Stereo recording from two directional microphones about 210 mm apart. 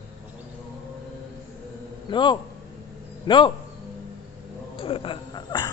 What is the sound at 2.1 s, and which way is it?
A man's voice, 20° left (ahead or behind).